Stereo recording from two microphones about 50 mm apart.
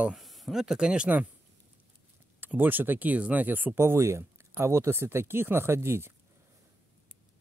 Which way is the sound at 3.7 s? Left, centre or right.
Right.